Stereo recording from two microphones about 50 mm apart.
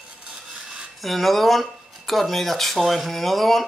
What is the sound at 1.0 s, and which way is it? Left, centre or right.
Speech, centre.